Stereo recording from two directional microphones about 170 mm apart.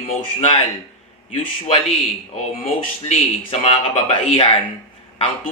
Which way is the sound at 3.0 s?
40° left (ahead or behind).